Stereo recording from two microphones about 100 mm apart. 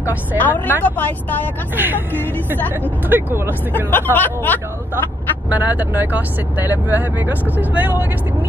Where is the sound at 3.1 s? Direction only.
20° right (ahead or behind).